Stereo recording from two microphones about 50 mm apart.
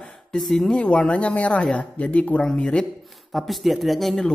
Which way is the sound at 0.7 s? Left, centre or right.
Left.